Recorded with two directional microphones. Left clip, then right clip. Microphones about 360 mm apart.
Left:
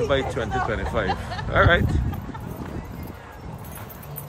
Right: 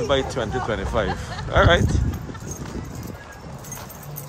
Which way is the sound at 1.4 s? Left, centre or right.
Centre.